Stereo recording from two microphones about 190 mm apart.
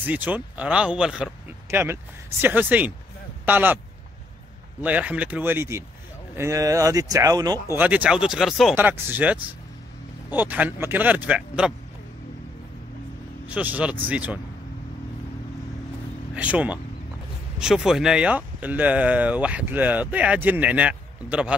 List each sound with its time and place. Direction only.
0.0 s speech: 10° right (ahead or behind)
4.8 s speech: 5° right (ahead or behind)
7.7 s speech: 10° right (ahead or behind)
8.7 s speech: 10° right (ahead or behind)
13.5 s speech: 5° right (ahead or behind)
16.3 s speech: 5° right (ahead or behind)